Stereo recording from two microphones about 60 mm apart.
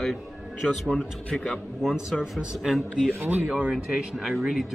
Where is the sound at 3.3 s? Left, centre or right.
Right.